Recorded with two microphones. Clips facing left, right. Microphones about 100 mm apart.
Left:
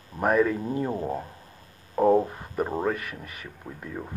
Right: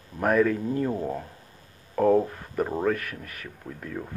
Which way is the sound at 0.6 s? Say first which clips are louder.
Right 1 dB; 20° left (ahead or behind).